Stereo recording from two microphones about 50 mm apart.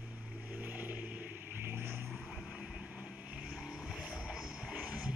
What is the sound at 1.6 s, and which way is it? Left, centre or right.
Vehicle, right.